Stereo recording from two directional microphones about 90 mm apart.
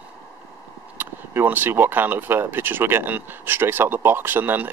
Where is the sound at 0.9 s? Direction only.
25° right (ahead or behind).